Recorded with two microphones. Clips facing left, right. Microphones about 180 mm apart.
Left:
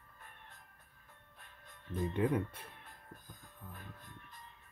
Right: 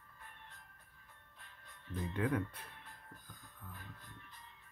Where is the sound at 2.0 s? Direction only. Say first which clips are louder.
Left 3 dB; 25° left (ahead or behind).